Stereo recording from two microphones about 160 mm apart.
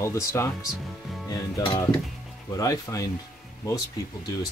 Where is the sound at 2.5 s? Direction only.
20° left (ahead or behind).